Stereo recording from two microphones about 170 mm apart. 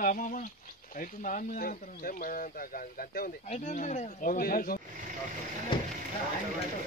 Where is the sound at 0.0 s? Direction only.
50° left (ahead or behind).